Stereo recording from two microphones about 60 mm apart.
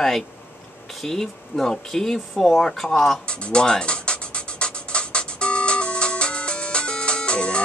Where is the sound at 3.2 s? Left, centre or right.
Centre.